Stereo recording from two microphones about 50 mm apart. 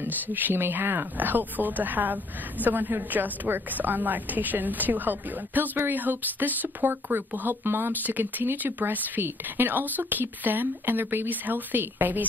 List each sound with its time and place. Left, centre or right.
0.0 s speech: right
8.0 s speech: right